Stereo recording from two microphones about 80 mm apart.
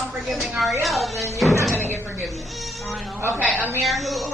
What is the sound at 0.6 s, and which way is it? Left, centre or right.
Speech, centre.